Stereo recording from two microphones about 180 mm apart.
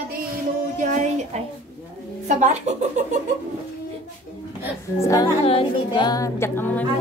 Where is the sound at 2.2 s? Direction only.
40° right (ahead or behind).